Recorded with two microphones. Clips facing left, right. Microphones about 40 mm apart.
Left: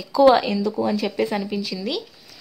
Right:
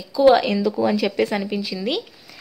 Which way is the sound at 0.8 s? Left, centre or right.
Right.